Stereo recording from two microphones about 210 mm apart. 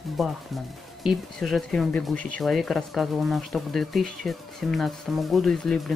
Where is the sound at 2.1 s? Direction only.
40° right (ahead or behind).